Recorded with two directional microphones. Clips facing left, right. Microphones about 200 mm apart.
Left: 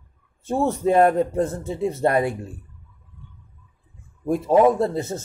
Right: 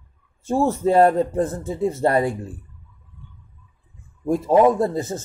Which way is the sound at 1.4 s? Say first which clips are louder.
Right 1 dB; 30° left (ahead or behind).